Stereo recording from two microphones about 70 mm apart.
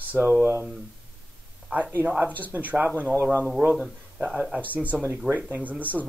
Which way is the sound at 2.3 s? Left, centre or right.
Left.